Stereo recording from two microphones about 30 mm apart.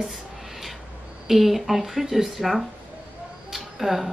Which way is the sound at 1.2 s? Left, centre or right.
Centre.